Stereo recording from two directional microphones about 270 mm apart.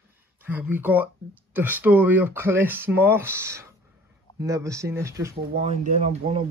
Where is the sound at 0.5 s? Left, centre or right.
Centre.